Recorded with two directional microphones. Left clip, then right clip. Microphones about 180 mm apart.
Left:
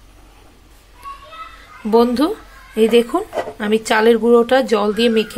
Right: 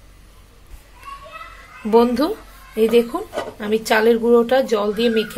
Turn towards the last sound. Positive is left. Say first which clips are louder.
# left 3 dB
turn(degrees=15)  # may be behind; listen again after turning